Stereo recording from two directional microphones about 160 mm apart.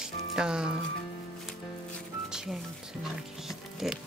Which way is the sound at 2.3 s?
5° right (ahead or behind).